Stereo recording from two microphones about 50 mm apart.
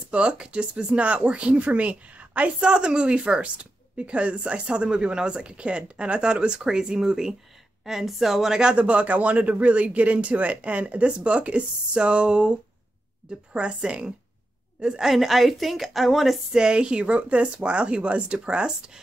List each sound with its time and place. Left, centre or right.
0.1 s speech: right
2.7 s a woman's voice: centre
8.7 s a woman's voice: right; by 16.3 s centre
16.5 s speech: centre